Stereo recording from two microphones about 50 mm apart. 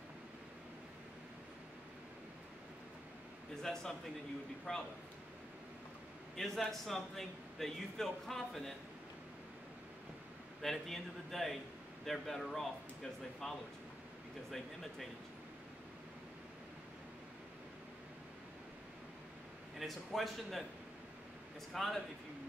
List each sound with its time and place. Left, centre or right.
3.6 s a man's voice: centre
6.3 s a man's voice: centre
10.6 s a man's voice: centre
14.5 s a man's voice: centre
19.8 s a man's voice: centre
21.7 s a man's voice: centre